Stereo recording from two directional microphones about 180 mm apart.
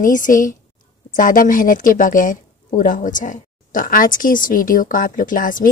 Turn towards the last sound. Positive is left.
turn(degrees=50)  # may be behind; listen again after turning